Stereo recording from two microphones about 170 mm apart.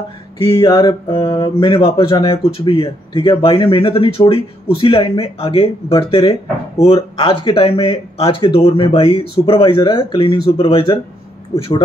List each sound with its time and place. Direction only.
0.6 s speech: 25° left (ahead or behind)